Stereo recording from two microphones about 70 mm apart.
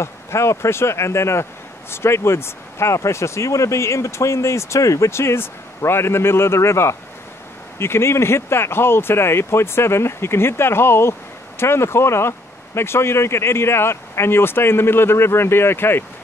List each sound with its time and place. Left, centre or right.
0.0 s speech: left